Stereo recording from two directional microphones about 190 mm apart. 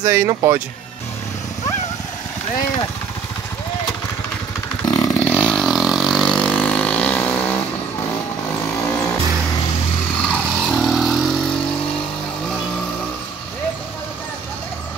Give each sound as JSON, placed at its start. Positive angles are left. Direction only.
{"t": 0.0, "sound": "speech", "side_deg": -15}
{"t": 4.8, "sound": "chainsaw", "side_deg": 15}
{"t": 5.2, "sound": "vehicle", "side_deg": 5}
{"t": 10.2, "sound": "vehicle", "side_deg": 5}